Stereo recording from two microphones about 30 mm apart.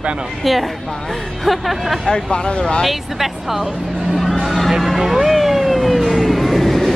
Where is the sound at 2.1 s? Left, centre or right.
Left.